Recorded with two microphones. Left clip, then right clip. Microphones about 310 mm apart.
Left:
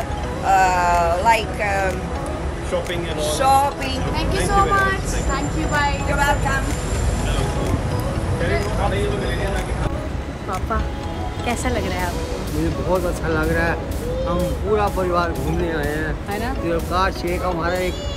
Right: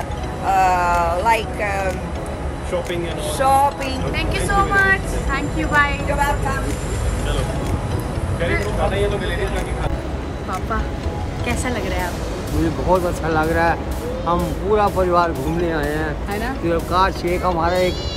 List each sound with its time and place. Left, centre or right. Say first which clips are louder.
0.5 s a sound: even; centre
2.7 s a woman's voice: right 1 dB; centre
11.4 s a woman's voice: even; centre
12.9 s speech: right 3 dB; centre